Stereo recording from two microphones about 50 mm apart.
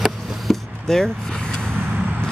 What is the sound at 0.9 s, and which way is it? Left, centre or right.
Speech, centre.